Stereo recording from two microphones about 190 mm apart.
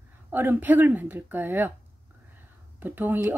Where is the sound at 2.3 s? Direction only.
10° right (ahead or behind).